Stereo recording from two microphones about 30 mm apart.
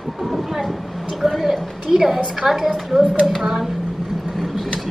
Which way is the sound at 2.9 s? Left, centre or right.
Centre.